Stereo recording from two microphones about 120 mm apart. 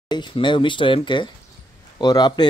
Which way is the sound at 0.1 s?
40° left (ahead or behind).